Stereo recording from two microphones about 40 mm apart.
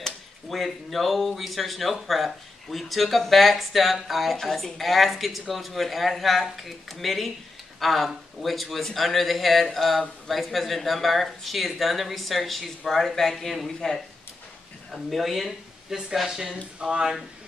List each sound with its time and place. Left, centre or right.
0.0 s speech: centre
14.9 s speech: centre